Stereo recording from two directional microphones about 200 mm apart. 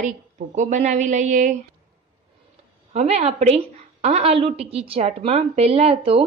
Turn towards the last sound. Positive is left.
turn(degrees=-30)  # may be behind; listen again after turning